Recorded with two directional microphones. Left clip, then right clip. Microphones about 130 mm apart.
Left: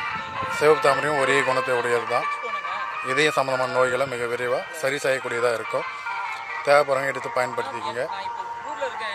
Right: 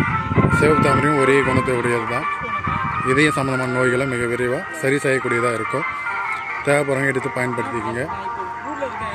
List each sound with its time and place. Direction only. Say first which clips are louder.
0.0 s speech: right 7 dB; 25° left (ahead or behind)
6.7 s speech: even; 10° left (ahead or behind)